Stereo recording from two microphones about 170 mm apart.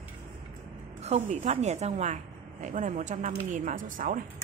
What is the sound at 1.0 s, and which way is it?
A woman's voice, 40° right (ahead or behind).